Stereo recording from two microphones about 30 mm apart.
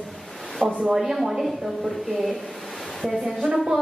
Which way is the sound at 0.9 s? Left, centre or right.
Centre.